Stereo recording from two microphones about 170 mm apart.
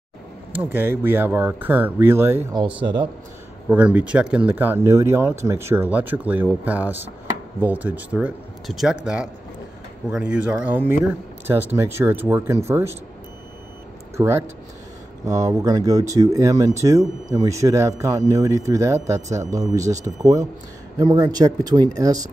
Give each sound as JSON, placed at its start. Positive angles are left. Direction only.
{"t": 0.6, "sound": "speech", "side_deg": -10}
{"t": 3.6, "sound": "speech", "side_deg": -10}
{"t": 14.1, "sound": "speech", "side_deg": -15}